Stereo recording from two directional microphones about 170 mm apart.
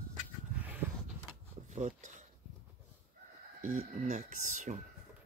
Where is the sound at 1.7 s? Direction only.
45° right (ahead or behind).